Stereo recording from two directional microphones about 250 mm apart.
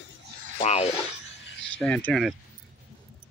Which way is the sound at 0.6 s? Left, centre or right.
Left.